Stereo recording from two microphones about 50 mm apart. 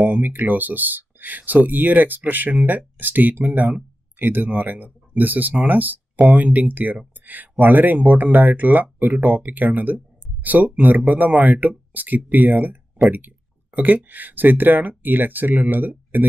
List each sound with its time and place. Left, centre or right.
0.1 s speech: right